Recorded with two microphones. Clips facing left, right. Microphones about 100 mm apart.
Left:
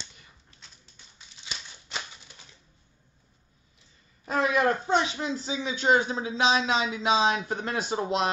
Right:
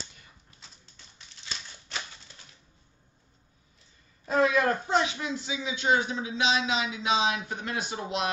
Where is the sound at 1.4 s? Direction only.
15° left (ahead or behind).